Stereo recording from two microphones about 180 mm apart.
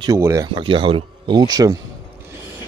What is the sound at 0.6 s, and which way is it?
Speech, 30° right (ahead or behind).